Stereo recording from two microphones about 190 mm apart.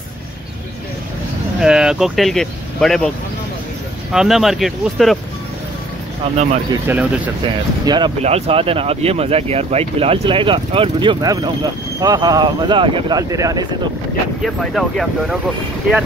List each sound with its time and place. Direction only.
1.6 s speech: 5° right (ahead or behind)
4.1 s speech: centre (ahead or behind)
6.2 s speech: 30° right (ahead or behind)
6.7 s speech: 10° right (ahead or behind)
7.4 s speech: 25° right (ahead or behind)
14.4 s speech: centre (ahead or behind)